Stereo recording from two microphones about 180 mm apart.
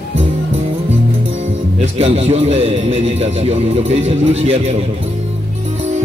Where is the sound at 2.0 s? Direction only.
35° right (ahead or behind).